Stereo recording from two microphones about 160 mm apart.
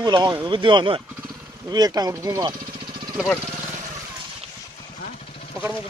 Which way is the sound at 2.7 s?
30° right (ahead or behind).